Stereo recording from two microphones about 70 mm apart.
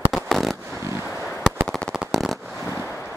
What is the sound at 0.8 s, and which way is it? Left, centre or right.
Fireworks, right.